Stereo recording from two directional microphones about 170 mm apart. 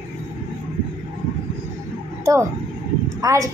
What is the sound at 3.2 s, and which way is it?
Speech, 20° right (ahead or behind).